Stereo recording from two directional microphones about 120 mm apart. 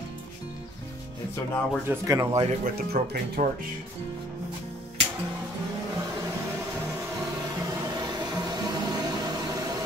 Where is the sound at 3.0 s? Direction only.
90° right.